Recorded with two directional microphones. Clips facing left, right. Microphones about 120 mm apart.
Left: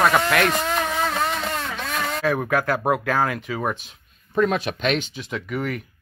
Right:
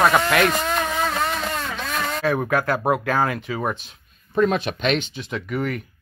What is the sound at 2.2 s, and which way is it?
Speech, 10° right (ahead or behind).